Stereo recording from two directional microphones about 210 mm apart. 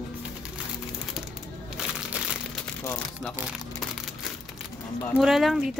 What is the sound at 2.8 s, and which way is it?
Speech, 5° left (ahead or behind).